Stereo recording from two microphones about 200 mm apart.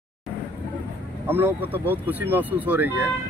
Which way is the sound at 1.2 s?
10° right (ahead or behind).